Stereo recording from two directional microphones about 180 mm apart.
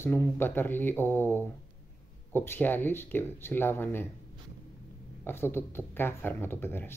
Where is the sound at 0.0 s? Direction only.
10° left (ahead or behind).